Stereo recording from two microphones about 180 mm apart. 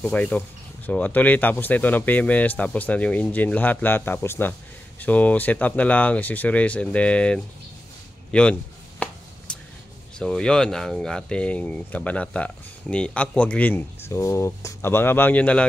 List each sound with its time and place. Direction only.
0.0 s speech: 10° left (ahead or behind)
9.5 s a sound: 5° left (ahead or behind)
10.1 s speech: 5° left (ahead or behind)